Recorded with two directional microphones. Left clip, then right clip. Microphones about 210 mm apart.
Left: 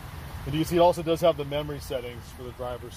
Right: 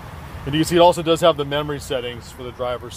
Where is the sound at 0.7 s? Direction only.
15° right (ahead or behind).